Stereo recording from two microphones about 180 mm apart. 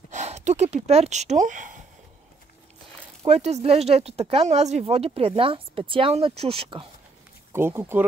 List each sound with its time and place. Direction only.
0.1 s speech: 40° right (ahead or behind)
3.3 s speech: 35° right (ahead or behind)
7.5 s speech: 15° right (ahead or behind)